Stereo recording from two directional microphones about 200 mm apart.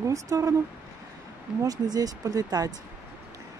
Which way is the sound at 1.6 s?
20° right (ahead or behind).